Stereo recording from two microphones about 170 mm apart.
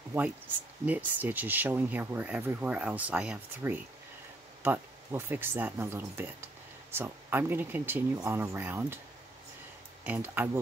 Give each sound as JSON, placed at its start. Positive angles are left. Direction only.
{"t": 0.8, "sound": "speech", "side_deg": -10}
{"t": 10.0, "sound": "speech", "side_deg": -10}